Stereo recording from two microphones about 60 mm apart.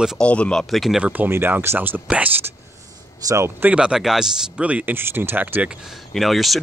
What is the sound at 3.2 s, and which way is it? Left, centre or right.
Speech, right.